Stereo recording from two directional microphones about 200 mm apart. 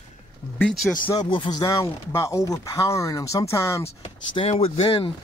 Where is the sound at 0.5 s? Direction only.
Centre (ahead or behind).